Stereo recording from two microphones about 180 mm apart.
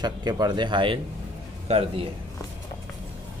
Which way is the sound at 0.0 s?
25° right (ahead or behind).